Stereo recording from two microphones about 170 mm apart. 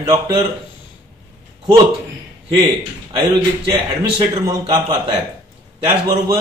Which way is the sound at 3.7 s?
20° right (ahead or behind).